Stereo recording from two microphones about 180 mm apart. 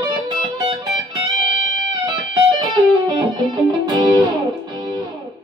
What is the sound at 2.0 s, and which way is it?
Music, 25° right (ahead or behind).